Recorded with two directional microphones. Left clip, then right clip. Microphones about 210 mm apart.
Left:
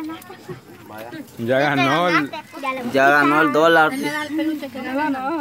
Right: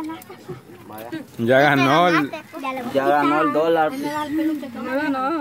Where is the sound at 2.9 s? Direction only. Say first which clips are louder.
Left 3 dB; 45° left (ahead or behind).